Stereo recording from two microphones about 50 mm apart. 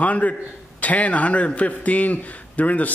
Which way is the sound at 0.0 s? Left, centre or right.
Left.